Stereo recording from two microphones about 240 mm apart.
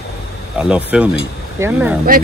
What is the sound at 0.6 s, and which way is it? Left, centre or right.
Speech, centre.